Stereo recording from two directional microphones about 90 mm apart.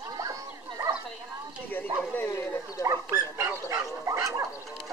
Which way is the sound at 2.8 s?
35° right (ahead or behind).